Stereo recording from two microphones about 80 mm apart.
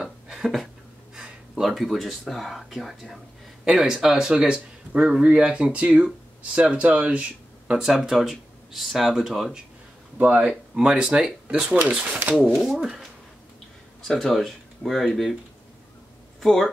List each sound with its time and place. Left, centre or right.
0.0 s a sound: centre
1.1 s speech: centre
10.1 s speech: centre
11.8 s speech: right
12.5 s speech: centre
14.0 s speech: centre
16.3 s speech: centre